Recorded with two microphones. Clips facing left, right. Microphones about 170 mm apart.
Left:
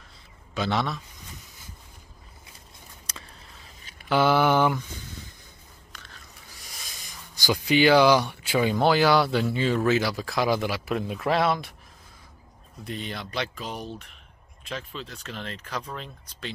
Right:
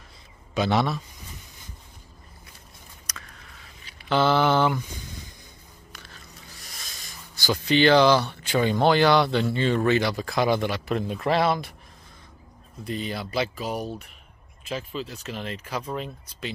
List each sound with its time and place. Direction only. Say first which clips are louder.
0.6 s speech: right 4 dB; 10° right (ahead or behind)
3.1 s a sound: right 1 dB; 30° left (ahead or behind)
4.1 s speech: even; 10° left (ahead or behind)
7.3 s speech: even; 10° left (ahead or behind)
12.8 s speech: right 4 dB; centre (ahead or behind)